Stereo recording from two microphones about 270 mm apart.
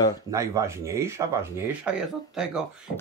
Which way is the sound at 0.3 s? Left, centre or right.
Centre.